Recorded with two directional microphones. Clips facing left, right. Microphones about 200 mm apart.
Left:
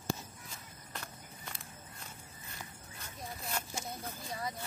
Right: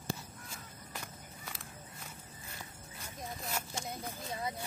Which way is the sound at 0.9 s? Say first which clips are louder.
Left 1 dB; 5° right (ahead or behind).